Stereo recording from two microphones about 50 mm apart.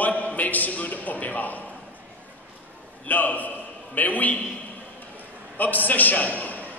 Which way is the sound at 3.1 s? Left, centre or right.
Left.